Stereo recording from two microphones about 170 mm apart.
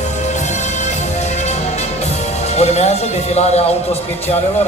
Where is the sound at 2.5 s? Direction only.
40° left (ahead or behind).